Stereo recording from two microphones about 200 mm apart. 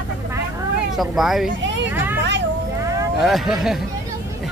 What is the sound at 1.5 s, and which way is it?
Vehicle, 65° right (ahead or behind).